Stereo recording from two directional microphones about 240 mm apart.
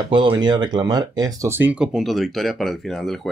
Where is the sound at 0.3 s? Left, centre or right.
Centre.